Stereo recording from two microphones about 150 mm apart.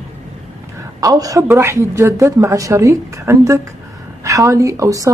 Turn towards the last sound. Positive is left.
turn(degrees=-20)  # may be behind; listen again after turning